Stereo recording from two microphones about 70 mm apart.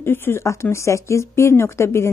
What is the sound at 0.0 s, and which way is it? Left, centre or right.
A woman's voice, left.